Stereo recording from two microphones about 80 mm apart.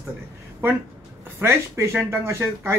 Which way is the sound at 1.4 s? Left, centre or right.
Right.